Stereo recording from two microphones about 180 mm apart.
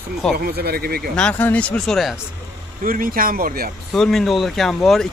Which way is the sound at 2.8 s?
50° right (ahead or behind).